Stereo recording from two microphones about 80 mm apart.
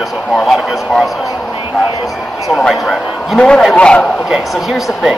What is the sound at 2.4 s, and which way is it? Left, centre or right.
Speech, centre.